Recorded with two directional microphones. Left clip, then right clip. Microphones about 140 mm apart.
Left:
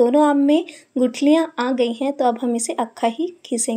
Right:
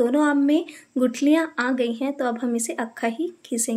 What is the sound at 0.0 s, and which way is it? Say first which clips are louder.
Speech: left 5 dB; 20° left (ahead or behind).